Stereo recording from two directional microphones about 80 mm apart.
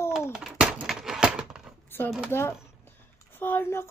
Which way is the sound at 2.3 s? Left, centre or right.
Left.